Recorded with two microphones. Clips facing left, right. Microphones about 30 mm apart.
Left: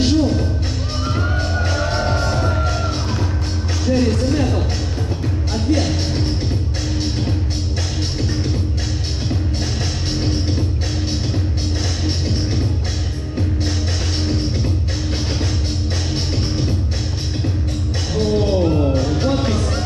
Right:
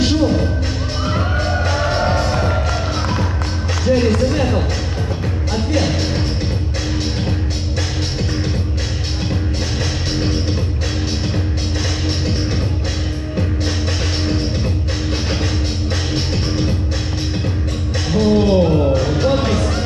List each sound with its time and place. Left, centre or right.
0.0 s music: right
1.0 s music: centre
3.8 s music: right
5.7 s music: right
14.2 s music: right
16.1 s music: right
18.1 s music: centre